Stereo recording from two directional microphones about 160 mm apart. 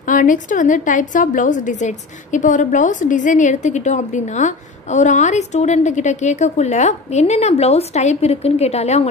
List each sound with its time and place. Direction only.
0.0 s a woman's voice: 55° left (ahead or behind)